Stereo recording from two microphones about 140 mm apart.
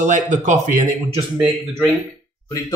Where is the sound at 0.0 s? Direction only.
60° right (ahead or behind).